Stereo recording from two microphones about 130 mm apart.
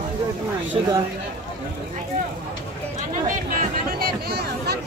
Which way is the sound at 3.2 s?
90° right.